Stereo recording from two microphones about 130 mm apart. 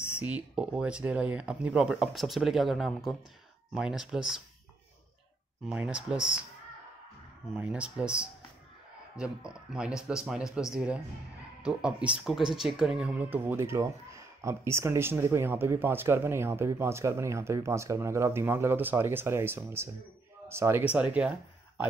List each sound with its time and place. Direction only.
0.2 s speech: 10° right (ahead or behind)
5.7 s speech: 10° right (ahead or behind)
7.5 s speech: 10° right (ahead or behind)